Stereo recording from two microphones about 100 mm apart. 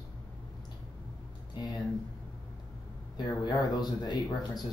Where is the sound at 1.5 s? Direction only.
40° left (ahead or behind).